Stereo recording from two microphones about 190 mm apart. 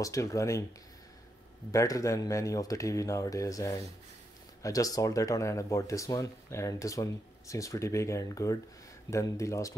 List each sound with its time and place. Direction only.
0.0 s speech: 15° left (ahead or behind)
1.7 s speech: 15° left (ahead or behind)